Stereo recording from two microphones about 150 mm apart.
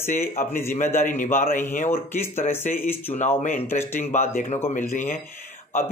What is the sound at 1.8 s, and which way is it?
Speech, 15° left (ahead or behind).